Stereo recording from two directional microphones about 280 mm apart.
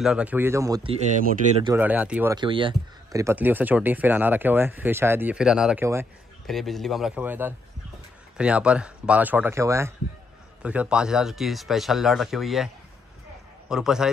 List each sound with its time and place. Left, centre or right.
0.0 s speech: centre
1.8 s speech: centre
13.7 s speech: centre